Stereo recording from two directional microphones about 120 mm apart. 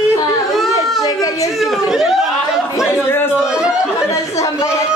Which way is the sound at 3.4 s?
5° right (ahead or behind).